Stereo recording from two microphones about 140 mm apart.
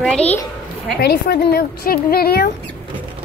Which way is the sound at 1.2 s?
90° left.